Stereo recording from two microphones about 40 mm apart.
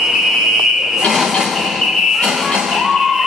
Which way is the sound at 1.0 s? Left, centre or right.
Centre.